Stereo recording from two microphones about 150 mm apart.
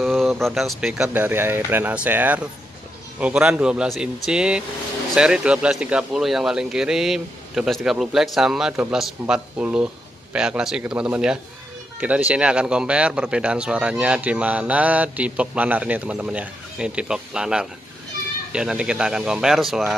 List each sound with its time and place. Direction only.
0.0 s a man's voice: centre (ahead or behind)